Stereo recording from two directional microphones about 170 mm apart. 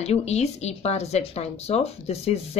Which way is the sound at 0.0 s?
40° left (ahead or behind).